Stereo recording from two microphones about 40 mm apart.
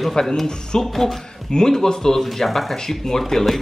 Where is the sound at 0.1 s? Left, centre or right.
Centre.